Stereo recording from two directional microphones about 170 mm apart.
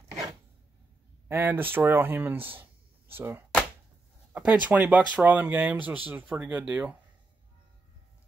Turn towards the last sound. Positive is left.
turn(degrees=-5)  # may be behind; listen again after turning